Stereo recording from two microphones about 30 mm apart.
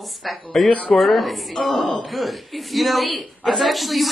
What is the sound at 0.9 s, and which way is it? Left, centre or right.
A woman's voice, centre.